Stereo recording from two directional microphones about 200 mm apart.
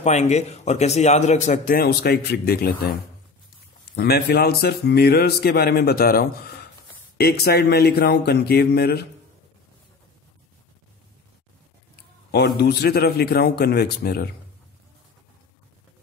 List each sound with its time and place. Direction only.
0.0 s speech: 35° left (ahead or behind); by 2.7 s 50° left (ahead or behind)
3.9 s speech: 55° left (ahead or behind)
12.3 s speech: 55° left (ahead or behind)